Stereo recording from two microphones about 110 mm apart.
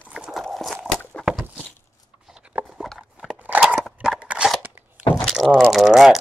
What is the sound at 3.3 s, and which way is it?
Biting, 15° right (ahead or behind).